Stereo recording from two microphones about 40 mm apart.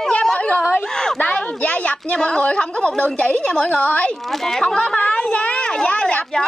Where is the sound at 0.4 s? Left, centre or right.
Left.